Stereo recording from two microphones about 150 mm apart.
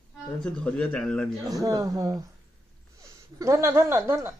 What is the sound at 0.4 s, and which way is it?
Speech, 5° left (ahead or behind).